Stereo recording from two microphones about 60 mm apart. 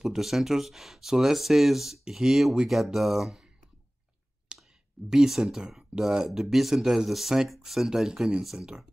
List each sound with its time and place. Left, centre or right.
0.0 s speech: centre
4.5 s clicking: centre
5.1 s speech: centre